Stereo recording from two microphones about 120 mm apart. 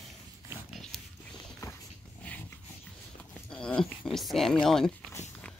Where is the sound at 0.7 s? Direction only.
Centre (ahead or behind).